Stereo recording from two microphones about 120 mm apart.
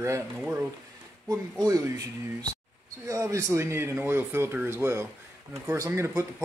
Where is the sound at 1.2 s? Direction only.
30° right (ahead or behind).